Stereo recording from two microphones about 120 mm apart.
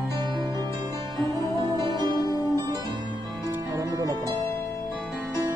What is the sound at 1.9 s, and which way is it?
Music, 35° right (ahead or behind).